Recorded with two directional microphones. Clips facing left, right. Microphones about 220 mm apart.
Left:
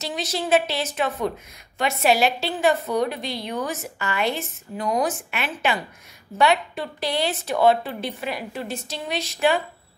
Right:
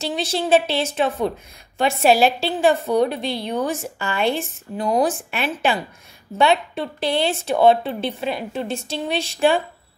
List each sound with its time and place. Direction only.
0.0 s a woman's voice: 30° right (ahead or behind)